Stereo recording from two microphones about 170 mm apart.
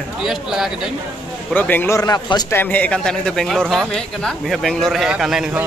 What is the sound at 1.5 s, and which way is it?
Speech, 10° left (ahead or behind).